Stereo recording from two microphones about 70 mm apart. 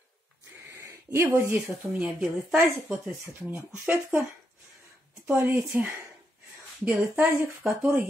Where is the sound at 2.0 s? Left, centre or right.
Centre.